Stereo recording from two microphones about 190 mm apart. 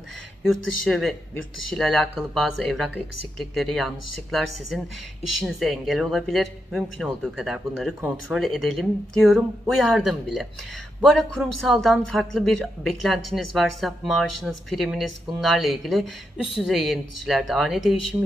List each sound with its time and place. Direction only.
0.4 s a woman's voice: centre (ahead or behind)
18.1 s speech: 15° right (ahead or behind)